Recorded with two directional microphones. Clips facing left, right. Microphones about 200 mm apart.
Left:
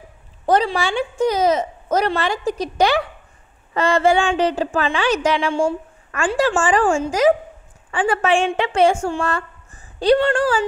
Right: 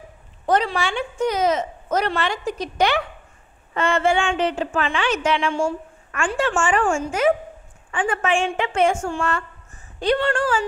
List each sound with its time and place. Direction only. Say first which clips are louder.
0.5 s a woman's voice: left 3 dB; 35° left (ahead or behind)